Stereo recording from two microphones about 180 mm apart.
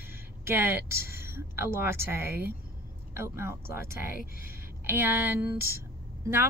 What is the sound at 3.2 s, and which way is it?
Speech, 15° right (ahead or behind).